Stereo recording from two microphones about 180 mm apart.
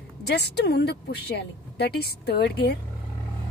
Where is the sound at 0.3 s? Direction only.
65° left (ahead or behind).